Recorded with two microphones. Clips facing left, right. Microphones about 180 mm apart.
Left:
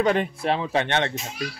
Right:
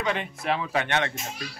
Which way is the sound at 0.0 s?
40° left (ahead or behind).